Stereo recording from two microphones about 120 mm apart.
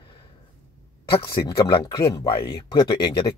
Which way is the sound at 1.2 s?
40° left (ahead or behind).